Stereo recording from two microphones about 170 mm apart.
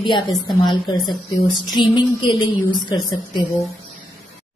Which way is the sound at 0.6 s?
25° left (ahead or behind).